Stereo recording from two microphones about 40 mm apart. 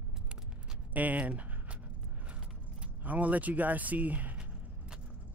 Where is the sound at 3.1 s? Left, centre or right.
Right.